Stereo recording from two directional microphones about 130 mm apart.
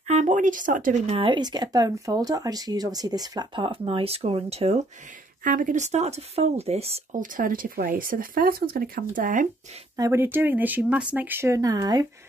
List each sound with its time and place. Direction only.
0.1 s speech: 65° right (ahead or behind); by 0.9 s 90° right
1.0 s speech: 45° right (ahead or behind)
5.4 s speech: 90° right; by 7.2 s 55° right (ahead or behind)
7.2 s speech: 90° right
9.9 s speech: 20° right (ahead or behind)